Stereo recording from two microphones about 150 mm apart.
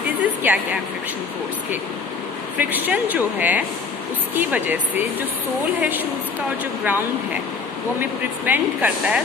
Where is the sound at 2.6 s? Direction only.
10° right (ahead or behind).